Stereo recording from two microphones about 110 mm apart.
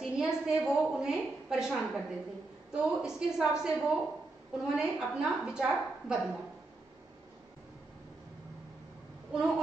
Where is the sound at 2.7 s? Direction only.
5° right (ahead or behind).